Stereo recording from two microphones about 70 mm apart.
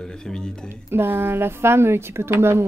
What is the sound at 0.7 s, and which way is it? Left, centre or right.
Speech, right.